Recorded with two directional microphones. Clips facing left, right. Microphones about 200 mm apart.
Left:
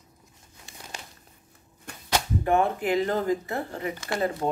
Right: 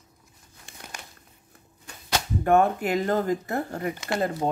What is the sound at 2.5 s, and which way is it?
Speech, 45° right (ahead or behind).